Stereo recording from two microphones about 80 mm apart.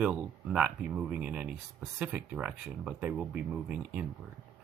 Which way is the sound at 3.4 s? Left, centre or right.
Centre.